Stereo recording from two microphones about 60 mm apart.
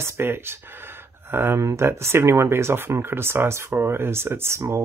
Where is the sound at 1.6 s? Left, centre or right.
Right.